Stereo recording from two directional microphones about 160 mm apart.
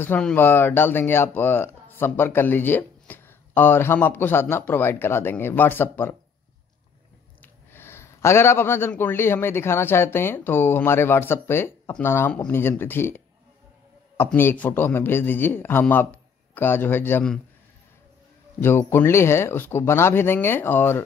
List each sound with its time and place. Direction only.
0.0 s speech: 10° left (ahead or behind)
7.4 s a man's voice: 15° left (ahead or behind)
18.6 s speech: 15° left (ahead or behind)